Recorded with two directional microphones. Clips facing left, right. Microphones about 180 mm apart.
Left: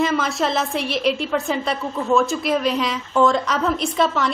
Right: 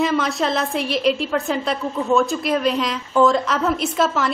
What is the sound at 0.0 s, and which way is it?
A woman's voice, centre (ahead or behind).